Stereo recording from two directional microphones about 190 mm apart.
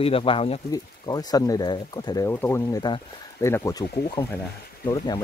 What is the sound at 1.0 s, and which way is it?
Speech, 20° left (ahead or behind).